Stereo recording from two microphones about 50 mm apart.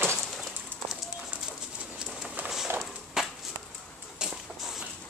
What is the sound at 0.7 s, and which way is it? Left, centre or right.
Run, right.